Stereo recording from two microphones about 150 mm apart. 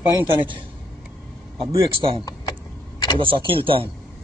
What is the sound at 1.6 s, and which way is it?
Speech, 35° right (ahead or behind).